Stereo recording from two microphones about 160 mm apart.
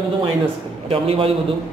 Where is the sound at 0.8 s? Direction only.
35° right (ahead or behind).